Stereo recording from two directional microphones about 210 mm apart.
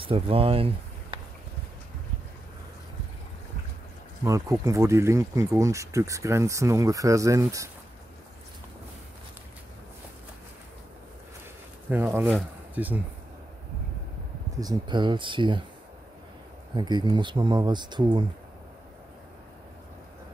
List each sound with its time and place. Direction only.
0.0 s speech: 25° right (ahead or behind)
4.2 s speech: 15° right (ahead or behind)
11.9 s speech: 10° right (ahead or behind)
14.6 s speech: 20° right (ahead or behind)
16.7 s speech: 20° right (ahead or behind)